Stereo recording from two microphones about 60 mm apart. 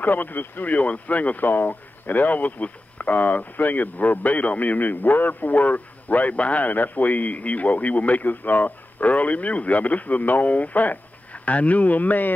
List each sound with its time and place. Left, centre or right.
0.0 s speech: left